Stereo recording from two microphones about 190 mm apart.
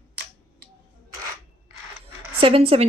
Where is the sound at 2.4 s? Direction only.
30° right (ahead or behind).